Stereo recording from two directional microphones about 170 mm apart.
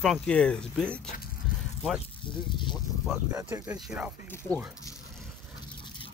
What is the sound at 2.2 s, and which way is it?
Speech, 30° left (ahead or behind).